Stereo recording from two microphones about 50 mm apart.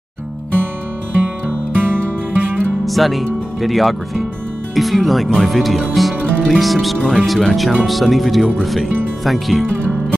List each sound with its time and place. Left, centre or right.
1.8 s music: right
2.8 s speech: centre